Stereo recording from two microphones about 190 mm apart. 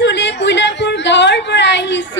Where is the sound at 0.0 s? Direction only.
65° left (ahead or behind).